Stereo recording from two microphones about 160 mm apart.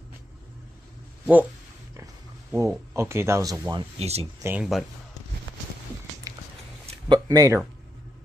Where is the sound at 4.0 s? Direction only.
40° right (ahead or behind).